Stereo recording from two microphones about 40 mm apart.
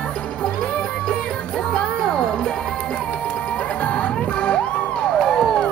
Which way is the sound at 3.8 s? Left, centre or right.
Left.